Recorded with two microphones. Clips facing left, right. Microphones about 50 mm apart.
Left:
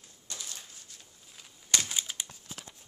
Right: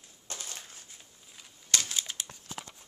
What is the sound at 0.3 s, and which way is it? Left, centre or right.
Crushing, right.